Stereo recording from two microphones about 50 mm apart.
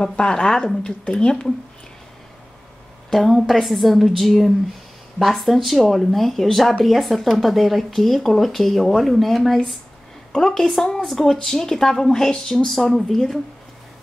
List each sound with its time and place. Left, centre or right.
0.3 s speech: centre
3.1 s speech: centre